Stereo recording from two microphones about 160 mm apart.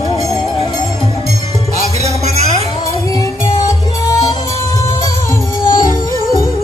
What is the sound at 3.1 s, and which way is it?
Music, 25° left (ahead or behind).